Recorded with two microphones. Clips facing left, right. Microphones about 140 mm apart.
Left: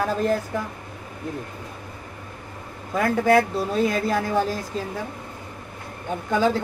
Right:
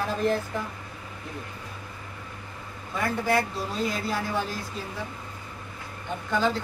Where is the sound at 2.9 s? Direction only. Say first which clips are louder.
Left 7 dB; 55° left (ahead or behind).